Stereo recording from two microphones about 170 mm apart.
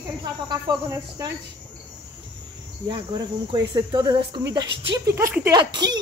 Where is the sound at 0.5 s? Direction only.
20° right (ahead or behind).